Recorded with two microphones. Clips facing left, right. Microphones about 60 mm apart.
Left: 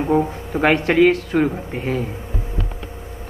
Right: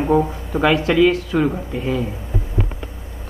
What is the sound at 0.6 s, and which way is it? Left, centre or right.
Speech, left.